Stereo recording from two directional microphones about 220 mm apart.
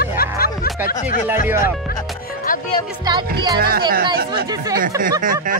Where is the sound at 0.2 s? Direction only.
45° left (ahead or behind).